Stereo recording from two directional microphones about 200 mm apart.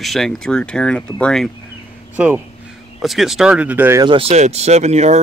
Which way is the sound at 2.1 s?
10° right (ahead or behind).